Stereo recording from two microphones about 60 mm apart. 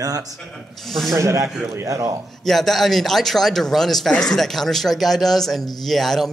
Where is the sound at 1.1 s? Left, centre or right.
Right.